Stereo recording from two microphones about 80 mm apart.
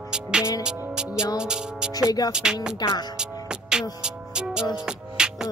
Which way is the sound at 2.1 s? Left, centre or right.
Left.